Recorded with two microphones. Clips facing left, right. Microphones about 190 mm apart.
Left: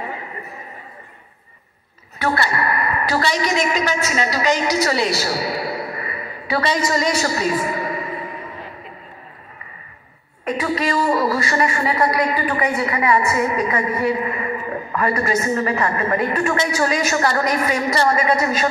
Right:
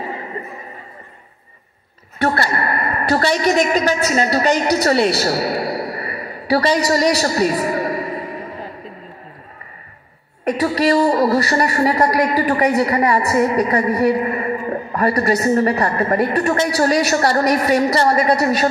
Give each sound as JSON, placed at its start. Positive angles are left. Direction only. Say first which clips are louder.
{"t": 2.3, "sound": "speech", "louder": "right 1 dB", "side_deg": -40}
{"t": 2.8, "sound": "a woman's voice", "louder": "right 5 dB", "side_deg": -50}
{"t": 5.7, "sound": "a sound", "louder": "right 3 dB", "side_deg": -35}
{"t": 10.6, "sound": "speech", "louder": "right 6 dB", "side_deg": -35}